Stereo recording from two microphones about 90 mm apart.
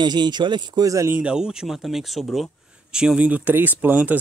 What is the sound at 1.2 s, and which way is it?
Speech, 10° right (ahead or behind).